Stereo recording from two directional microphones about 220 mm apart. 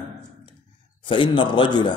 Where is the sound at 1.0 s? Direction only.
20° left (ahead or behind).